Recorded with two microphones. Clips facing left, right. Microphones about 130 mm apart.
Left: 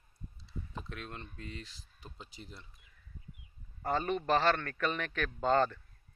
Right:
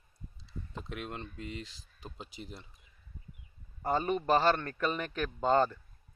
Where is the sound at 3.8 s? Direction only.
10° right (ahead or behind).